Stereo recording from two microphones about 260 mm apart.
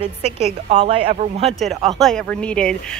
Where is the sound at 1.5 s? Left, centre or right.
Centre.